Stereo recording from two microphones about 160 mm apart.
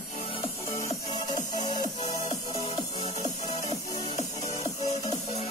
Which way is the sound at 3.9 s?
25° left (ahead or behind).